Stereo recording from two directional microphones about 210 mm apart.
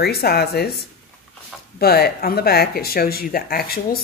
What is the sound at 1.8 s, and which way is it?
Speech, 45° left (ahead or behind).